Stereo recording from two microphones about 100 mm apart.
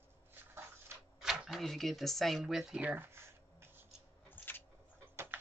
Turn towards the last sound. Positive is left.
turn(degrees=20)  # may be behind; listen again after turning